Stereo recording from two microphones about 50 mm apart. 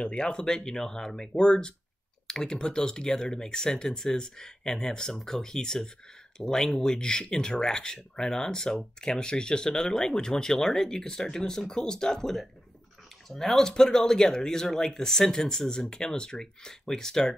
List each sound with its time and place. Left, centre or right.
0.0 s speech: centre